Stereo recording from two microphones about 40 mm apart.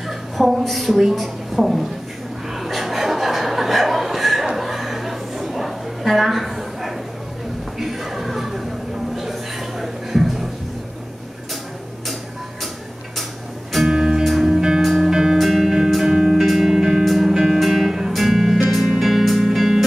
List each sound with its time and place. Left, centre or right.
0.4 s a woman's voice: centre
2.6 s chuckle: centre
4.6 s a sound: centre
13.8 s music: centre
14.2 s music: centre
14.5 s music: centre
15.3 s music: centre
15.6 s music: centre
16.3 s music: centre
17.0 s music: centre
17.3 s music: centre